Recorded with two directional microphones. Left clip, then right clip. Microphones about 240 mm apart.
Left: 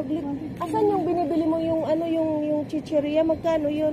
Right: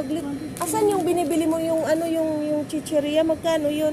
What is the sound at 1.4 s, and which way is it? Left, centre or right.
Speech, right.